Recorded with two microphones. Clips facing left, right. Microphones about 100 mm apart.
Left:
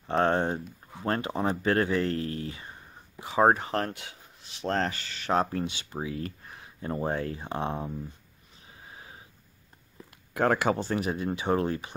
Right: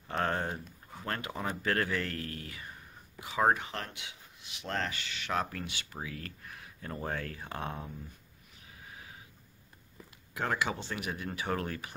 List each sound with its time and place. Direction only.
0.0 s speech: 30° left (ahead or behind)
8.8 s sniff: 30° left (ahead or behind)
10.3 s speech: 50° left (ahead or behind); by 11.9 s 25° left (ahead or behind)